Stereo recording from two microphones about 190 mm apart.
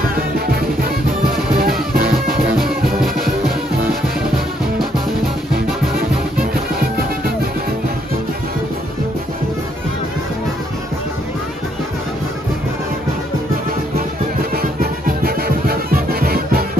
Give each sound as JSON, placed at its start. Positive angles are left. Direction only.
{"t": 0.1, "sound": "music", "side_deg": -55}
{"t": 14.5, "sound": "music", "side_deg": -50}